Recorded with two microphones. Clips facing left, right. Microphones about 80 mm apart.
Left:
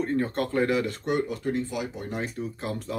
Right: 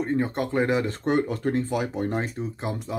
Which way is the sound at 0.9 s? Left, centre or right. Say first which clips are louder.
Right 3 dB; right.